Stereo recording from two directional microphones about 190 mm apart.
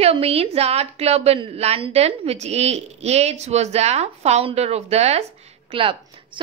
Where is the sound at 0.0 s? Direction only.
30° right (ahead or behind).